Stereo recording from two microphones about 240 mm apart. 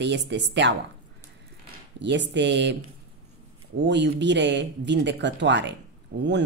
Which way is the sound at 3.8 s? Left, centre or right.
Right.